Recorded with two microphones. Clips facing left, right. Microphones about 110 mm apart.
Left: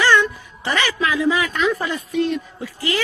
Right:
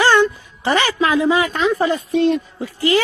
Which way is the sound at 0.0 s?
30° right (ahead or behind).